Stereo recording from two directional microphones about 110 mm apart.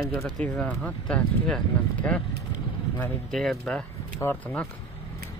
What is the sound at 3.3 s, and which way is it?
Speech, 5° left (ahead or behind).